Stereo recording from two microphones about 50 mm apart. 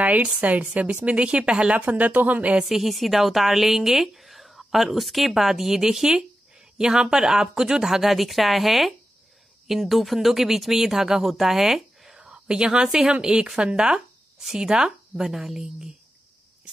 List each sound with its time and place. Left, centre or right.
0.0 s a woman's voice: right
2.0 s a woman's voice: right
2.6 s a woman's voice: centre
12.2 s a woman's voice: centre